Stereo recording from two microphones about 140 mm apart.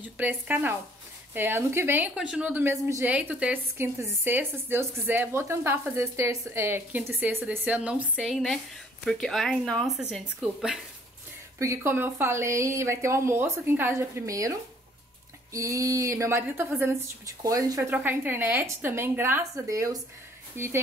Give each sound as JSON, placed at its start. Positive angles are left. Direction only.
{"t": 0.0, "sound": "a woman's voice", "side_deg": -10}
{"t": 11.5, "sound": "a woman's voice", "side_deg": -20}
{"t": 15.5, "sound": "a woman's voice", "side_deg": -25}
{"t": 17.9, "sound": "a woman's voice", "side_deg": -15}